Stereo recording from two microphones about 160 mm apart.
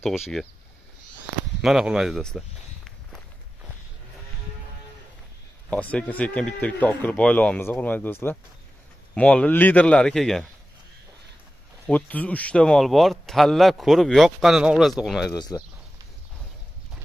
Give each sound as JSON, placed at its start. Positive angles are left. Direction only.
{"t": 1.6, "sound": "walk", "side_deg": 0}
{"t": 5.7, "sound": "speech", "side_deg": 10}
{"t": 11.8, "sound": "speech", "side_deg": 10}
{"t": 15.3, "sound": "speech", "side_deg": 25}